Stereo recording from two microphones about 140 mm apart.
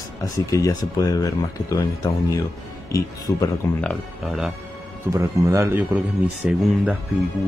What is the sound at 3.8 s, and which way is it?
Speech, centre (ahead or behind).